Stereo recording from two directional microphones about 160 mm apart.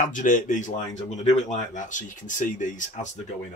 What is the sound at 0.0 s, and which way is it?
Speech, 55° left (ahead or behind).